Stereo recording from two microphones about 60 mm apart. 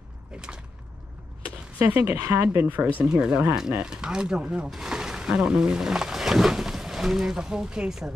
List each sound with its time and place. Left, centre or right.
1.8 s speech: right
2.2 s speech: right
2.6 s speech: right
3.1 s speech: centre